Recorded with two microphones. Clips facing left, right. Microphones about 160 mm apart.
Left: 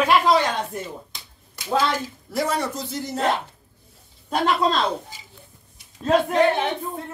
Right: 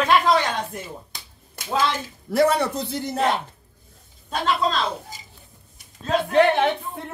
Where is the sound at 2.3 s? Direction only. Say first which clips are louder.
Right 5 dB; 60° right (ahead or behind).